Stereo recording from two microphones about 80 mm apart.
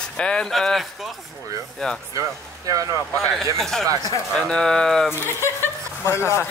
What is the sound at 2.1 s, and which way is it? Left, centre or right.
Speech, right.